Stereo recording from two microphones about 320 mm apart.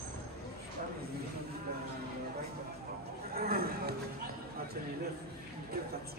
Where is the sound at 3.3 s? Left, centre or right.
Right.